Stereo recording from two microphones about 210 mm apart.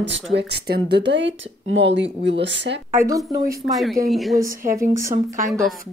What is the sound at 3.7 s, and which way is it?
Speech, centre (ahead or behind).